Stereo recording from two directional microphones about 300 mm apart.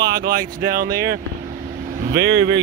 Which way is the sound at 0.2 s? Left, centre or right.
Right.